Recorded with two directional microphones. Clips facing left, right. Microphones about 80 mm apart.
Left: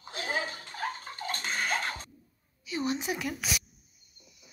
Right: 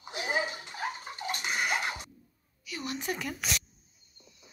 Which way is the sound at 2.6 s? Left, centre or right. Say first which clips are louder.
Left 6 dB; left.